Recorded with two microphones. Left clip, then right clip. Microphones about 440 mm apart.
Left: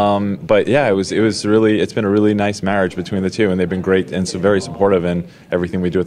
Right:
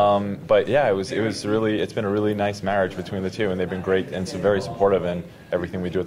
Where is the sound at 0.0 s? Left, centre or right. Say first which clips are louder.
Left 3 dB; left.